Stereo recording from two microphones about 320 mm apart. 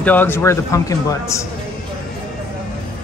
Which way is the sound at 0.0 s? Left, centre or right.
Centre.